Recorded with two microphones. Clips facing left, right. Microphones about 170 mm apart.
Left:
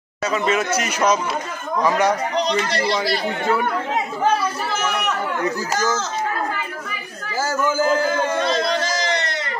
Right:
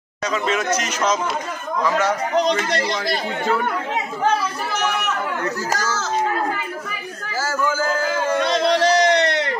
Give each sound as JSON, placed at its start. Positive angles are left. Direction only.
{"t": 0.2, "sound": "speech", "side_deg": 5}
{"t": 2.4, "sound": "speech", "side_deg": -50}
{"t": 8.4, "sound": "a sound", "side_deg": -70}